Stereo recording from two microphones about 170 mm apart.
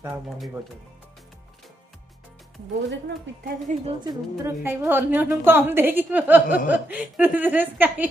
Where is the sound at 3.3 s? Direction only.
90° right.